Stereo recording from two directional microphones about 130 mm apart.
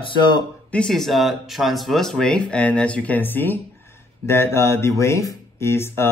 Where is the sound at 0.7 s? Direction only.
5° left (ahead or behind).